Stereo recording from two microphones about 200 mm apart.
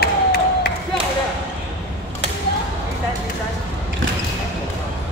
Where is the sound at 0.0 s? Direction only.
55° left (ahead or behind).